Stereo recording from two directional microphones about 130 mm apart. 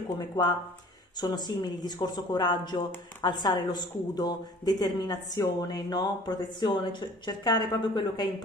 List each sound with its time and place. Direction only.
1.1 s speech: 30° left (ahead or behind)